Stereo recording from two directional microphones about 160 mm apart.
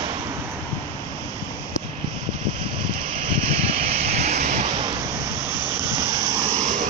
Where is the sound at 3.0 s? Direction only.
45° right (ahead or behind).